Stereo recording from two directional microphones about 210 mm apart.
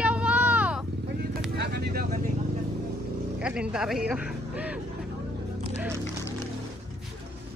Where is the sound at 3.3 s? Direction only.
5° right (ahead or behind).